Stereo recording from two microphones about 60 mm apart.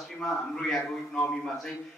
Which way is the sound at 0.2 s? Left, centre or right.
Centre.